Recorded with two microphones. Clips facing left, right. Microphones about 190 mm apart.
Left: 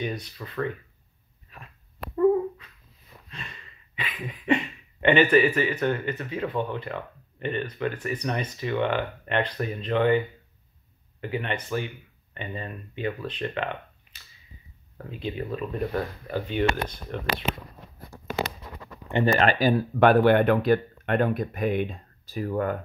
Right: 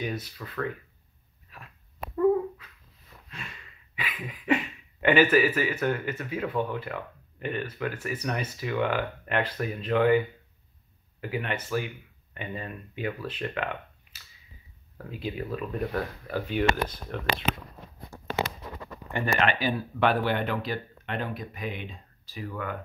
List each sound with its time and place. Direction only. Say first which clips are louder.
0.0 s speech: left 1 dB; 5° right (ahead or behind)
3.3 s speech: left 1 dB; 5° right (ahead or behind)
19.4 s speech: left 5 dB; 45° left (ahead or behind)